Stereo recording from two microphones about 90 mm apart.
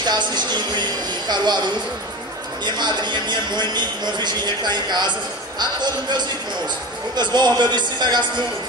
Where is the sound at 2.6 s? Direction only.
55° right (ahead or behind).